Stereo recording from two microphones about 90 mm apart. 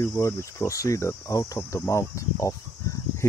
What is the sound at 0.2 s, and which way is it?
Speech, 30° left (ahead or behind).